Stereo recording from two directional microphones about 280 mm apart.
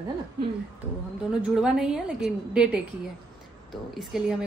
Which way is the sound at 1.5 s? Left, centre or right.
Centre.